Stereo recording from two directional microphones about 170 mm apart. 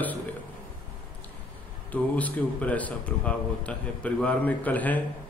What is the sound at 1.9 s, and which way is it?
A man's voice, 10° left (ahead or behind).